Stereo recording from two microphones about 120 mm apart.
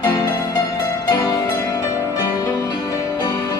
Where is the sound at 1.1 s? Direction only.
25° left (ahead or behind).